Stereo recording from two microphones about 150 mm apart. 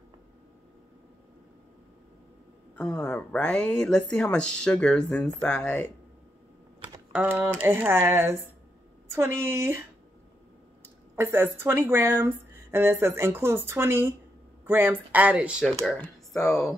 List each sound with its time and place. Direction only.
2.7 s speech: 10° left (ahead or behind)
7.2 s speech: 15° right (ahead or behind)
11.1 s speech: 15° right (ahead or behind)
15.9 s speech: 10° left (ahead or behind)